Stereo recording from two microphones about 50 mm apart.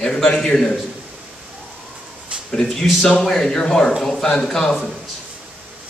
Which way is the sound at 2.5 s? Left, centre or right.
Centre.